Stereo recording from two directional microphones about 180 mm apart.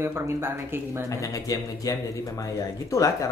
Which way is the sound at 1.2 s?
20° left (ahead or behind).